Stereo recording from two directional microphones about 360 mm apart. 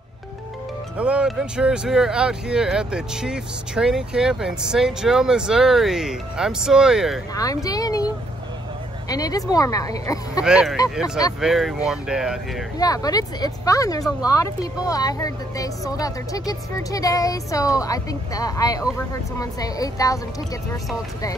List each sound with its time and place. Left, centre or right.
0.9 s speech: centre
7.3 s speech: centre
9.1 s speech: centre
10.4 s speech: centre
12.7 s speech: centre